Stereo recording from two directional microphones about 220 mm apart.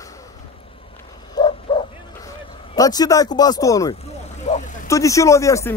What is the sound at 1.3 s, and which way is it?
Bow-wow, 20° left (ahead or behind).